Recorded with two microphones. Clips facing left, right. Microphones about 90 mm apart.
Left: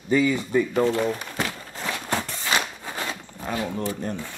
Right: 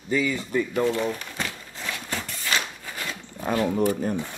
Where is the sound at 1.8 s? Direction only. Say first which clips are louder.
Left 5 dB; 35° left (ahead or behind).